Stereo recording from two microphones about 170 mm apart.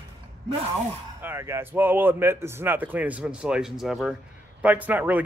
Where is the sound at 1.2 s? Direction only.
15° right (ahead or behind).